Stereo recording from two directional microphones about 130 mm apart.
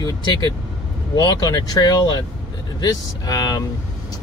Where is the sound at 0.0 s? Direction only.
35° left (ahead or behind).